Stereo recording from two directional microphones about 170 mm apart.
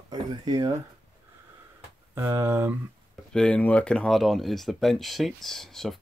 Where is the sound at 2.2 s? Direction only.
15° right (ahead or behind).